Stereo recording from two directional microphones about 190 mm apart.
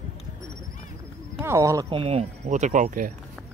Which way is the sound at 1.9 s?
35° right (ahead or behind).